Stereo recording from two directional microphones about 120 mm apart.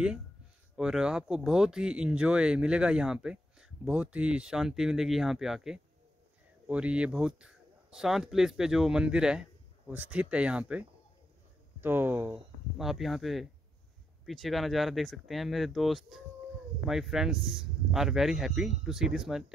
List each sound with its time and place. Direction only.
0.7 s speech: 5° right (ahead or behind)
12.7 s speech: 5° right (ahead or behind)